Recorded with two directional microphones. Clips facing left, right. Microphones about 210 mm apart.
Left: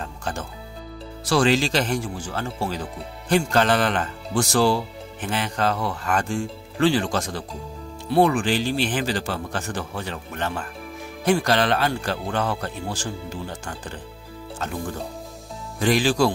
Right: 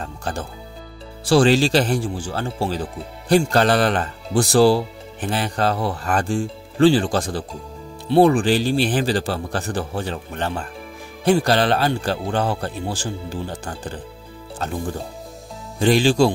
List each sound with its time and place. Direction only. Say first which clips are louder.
0.2 s music: right 3 dB; 35° right (ahead or behind)
1.2 s speech: right 5 dB; 30° right (ahead or behind)
15.8 s speech: right 4 dB; 30° right (ahead or behind)